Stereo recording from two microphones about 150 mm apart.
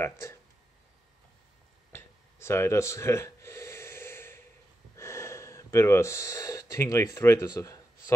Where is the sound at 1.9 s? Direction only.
15° left (ahead or behind).